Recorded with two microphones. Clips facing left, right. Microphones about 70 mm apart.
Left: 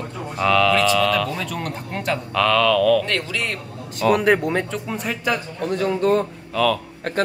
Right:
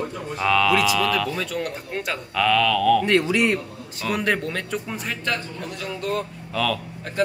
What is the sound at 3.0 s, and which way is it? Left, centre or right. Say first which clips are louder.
Speech: right 6 dB; centre.